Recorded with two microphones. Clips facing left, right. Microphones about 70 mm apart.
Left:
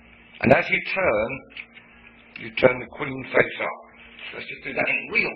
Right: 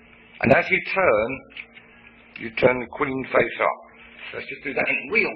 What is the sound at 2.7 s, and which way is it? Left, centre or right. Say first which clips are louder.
Speech: right 4 dB; centre.